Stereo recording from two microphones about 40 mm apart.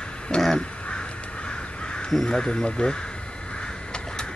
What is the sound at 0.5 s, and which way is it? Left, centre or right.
Crow, left.